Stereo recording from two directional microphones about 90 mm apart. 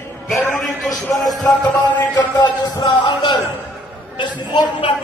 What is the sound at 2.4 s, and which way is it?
A man's voice, 50° left (ahead or behind).